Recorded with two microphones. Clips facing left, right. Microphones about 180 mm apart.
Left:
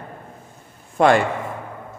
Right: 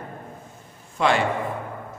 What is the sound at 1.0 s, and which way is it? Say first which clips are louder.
Speech: left 6 dB; 50° left (ahead or behind).